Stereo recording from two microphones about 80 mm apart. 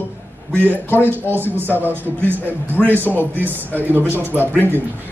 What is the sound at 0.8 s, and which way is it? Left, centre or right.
Speech, left.